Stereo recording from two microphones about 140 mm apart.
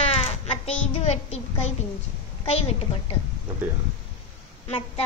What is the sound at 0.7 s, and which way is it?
Speech, 50° left (ahead or behind).